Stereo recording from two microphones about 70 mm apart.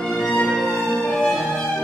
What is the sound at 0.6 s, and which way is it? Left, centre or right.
Music, right.